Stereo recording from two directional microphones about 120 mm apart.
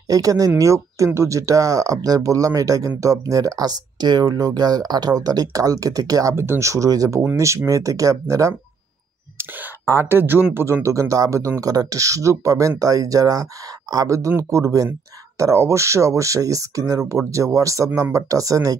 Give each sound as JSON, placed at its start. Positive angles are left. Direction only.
{"t": 0.1, "sound": "speech", "side_deg": -30}